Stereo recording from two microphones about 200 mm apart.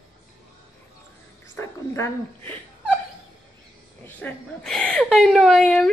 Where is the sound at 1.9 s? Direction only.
10° left (ahead or behind).